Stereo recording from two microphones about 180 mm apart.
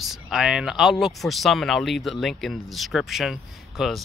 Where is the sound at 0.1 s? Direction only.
Centre (ahead or behind).